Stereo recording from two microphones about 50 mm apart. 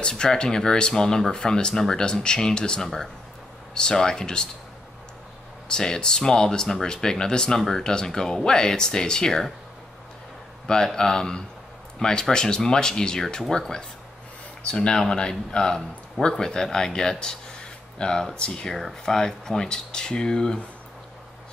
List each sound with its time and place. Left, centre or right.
0.1 s speech: centre
5.7 s speech: centre
10.7 s speech: centre